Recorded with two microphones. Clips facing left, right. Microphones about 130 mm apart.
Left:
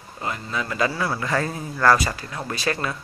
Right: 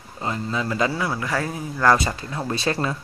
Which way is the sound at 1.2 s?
10° right (ahead or behind).